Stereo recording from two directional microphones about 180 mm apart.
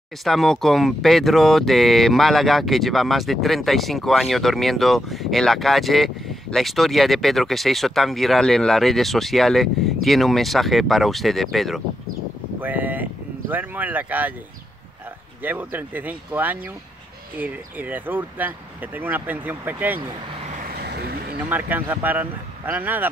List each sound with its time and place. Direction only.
0.2 s speech: centre (ahead or behind)
12.5 s speech: 10° right (ahead or behind)
15.4 s speech: 10° right (ahead or behind)
20.7 s vehicle: 60° right (ahead or behind)
21.5 s speech: 10° right (ahead or behind)